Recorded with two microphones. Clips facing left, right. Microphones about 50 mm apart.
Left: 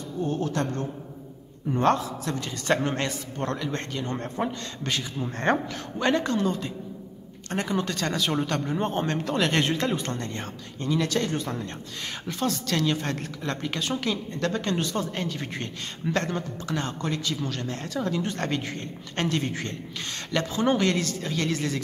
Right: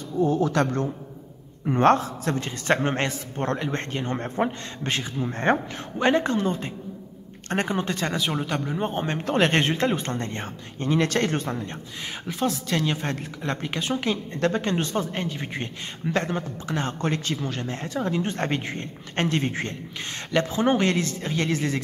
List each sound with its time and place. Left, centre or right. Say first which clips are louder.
0.5 s a woman's voice: right 5 dB; right
1.7 s a man's voice: right 4 dB; right
5.2 s speech: right 2 dB; centre
7.4 s speech: right 4 dB; right
7.7 s speech: right 1 dB; right; by 9.0 s centre
9.2 s speech: right 5 dB; right
11.0 s speech: right 3 dB; right
12.3 s speech: right 2 dB; centre
17.0 s a man's voice: right 3 dB; right
17.4 s speech: right 1 dB; right